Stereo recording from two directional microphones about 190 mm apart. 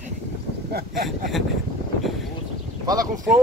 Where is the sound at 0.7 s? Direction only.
55° right (ahead or behind).